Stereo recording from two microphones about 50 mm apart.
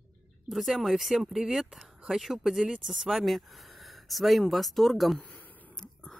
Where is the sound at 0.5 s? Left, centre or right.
Centre.